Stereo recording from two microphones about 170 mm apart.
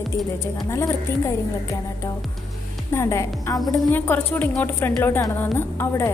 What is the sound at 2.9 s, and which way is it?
A woman's voice, 15° left (ahead or behind).